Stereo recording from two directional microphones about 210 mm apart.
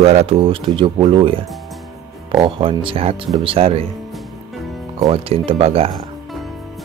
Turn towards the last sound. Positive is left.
turn(degrees=-25)  # may be behind; listen again after turning